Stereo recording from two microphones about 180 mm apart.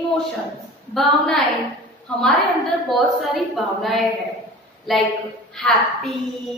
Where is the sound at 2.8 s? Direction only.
Centre (ahead or behind).